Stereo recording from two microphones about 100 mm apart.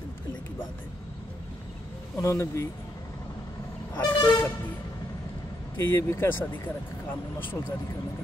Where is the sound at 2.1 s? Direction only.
30° left (ahead or behind).